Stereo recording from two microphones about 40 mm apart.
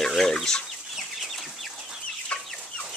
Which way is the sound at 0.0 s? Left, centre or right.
Centre.